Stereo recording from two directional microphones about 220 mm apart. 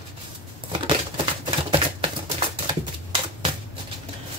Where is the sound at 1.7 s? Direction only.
25° right (ahead or behind).